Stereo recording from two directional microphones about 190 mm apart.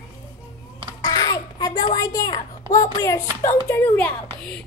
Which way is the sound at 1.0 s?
20° left (ahead or behind).